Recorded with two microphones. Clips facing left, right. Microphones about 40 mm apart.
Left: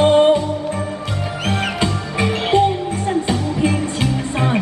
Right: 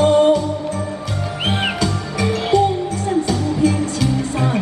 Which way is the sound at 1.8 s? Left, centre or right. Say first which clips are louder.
Left 1 dB; left.